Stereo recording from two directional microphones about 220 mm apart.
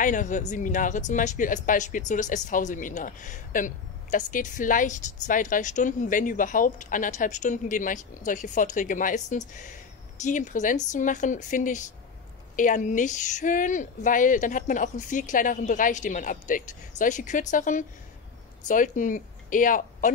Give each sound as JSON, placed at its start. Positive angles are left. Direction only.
{"t": 0.0, "sound": "speech", "side_deg": 35}